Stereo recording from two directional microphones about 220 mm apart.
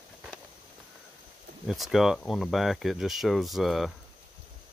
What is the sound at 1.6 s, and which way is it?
Speech, centre (ahead or behind).